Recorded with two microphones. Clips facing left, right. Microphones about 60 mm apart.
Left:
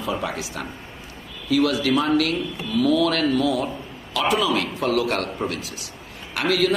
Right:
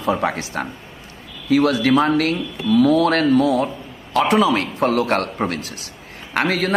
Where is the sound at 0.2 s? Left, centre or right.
Right.